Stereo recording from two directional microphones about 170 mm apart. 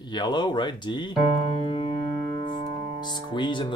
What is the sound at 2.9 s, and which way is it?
Speech, 25° left (ahead or behind).